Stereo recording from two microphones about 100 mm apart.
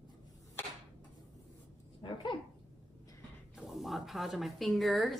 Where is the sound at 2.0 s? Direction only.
55° left (ahead or behind).